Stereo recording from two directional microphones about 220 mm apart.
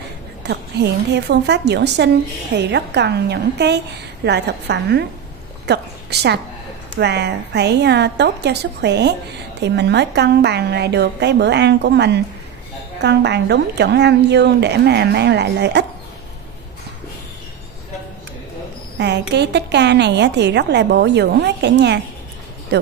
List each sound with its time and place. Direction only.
0.4 s a woman's voice: 50° right (ahead or behind)
18.9 s a woman's voice: 50° right (ahead or behind)